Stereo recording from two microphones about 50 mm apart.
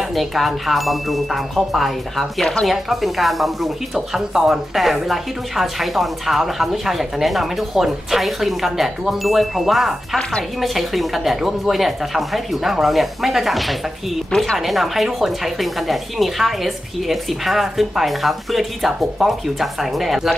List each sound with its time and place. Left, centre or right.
0.1 s speech: centre
14.6 s speech: centre